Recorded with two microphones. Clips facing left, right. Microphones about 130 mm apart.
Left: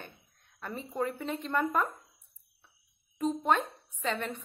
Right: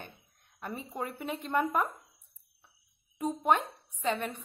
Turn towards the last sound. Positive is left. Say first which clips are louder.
# right 1 dB
turn(degrees=-15)  # may be behind; listen again after turning